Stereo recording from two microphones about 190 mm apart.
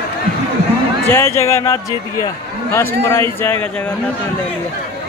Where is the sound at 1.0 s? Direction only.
15° left (ahead or behind).